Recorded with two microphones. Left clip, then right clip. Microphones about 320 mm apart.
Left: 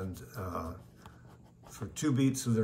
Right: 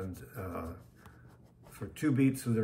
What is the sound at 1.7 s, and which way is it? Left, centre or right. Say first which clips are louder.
Speech: right 1 dB; centre.